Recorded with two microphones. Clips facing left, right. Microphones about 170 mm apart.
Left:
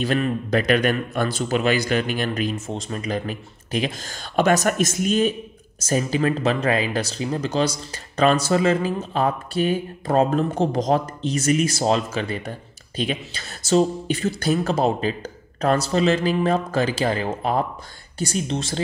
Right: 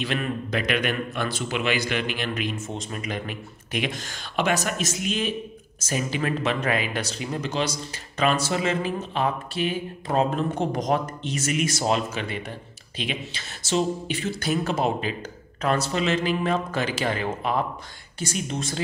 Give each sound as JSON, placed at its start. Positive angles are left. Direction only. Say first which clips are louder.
{"t": 0.0, "sound": "speech", "louder": "left 5 dB", "side_deg": 40}